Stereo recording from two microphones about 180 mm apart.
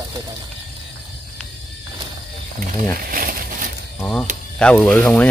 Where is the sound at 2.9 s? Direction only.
55° right (ahead or behind).